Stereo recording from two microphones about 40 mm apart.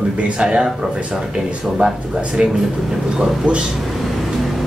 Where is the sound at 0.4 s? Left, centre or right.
Centre.